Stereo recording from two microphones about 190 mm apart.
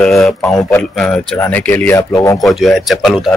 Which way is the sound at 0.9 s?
Centre (ahead or behind).